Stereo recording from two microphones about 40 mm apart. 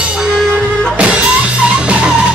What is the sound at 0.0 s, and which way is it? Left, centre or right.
Music, right.